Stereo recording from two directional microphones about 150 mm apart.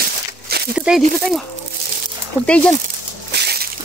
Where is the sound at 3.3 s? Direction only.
90° right.